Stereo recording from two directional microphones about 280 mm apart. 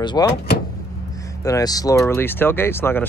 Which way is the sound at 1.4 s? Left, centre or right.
Centre.